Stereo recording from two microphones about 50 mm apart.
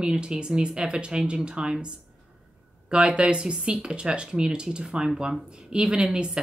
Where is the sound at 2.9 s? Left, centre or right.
Right.